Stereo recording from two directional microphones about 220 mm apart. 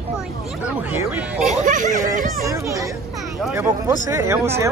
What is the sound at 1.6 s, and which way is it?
Speech, 35° right (ahead or behind).